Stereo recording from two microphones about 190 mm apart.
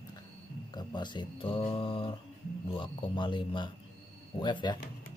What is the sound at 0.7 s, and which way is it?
Speech, 25° left (ahead or behind).